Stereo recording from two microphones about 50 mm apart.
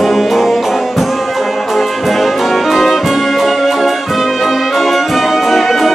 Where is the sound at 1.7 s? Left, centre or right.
Centre.